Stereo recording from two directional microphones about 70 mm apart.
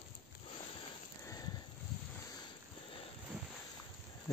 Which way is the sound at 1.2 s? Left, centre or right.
Left.